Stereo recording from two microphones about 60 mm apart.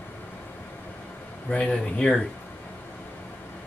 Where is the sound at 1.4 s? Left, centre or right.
Centre.